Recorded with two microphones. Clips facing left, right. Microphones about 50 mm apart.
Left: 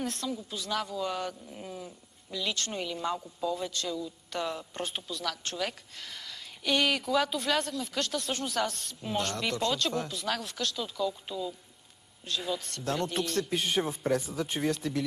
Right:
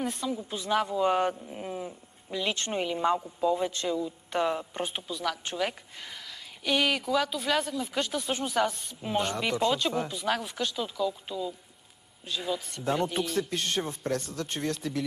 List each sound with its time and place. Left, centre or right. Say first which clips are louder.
0.0 s speech: right 3 dB; centre
0.4 s speech: right 6 dB; right
4.8 s speech: right 1 dB; centre
13.5 s speech: left 1 dB; centre